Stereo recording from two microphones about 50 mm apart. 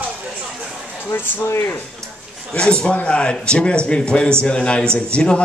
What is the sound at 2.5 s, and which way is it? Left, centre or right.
A man's voice, centre.